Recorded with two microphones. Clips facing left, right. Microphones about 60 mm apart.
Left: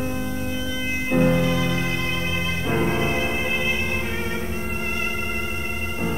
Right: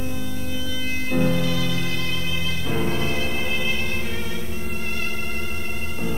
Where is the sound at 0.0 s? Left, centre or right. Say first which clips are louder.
Left 3 dB; left.